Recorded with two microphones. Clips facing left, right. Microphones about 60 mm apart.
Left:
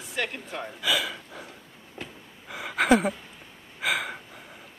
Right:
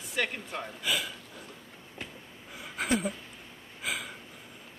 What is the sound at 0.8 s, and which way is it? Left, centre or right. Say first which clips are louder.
Speech: left 5 dB; left.